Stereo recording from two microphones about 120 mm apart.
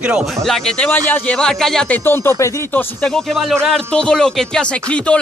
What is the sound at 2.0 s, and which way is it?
Speech, 20° left (ahead or behind).